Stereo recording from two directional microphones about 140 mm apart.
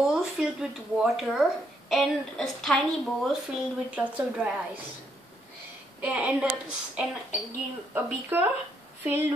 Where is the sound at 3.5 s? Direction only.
10° right (ahead or behind).